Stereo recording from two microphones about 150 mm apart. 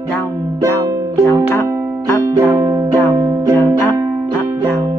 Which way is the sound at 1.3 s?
20° left (ahead or behind).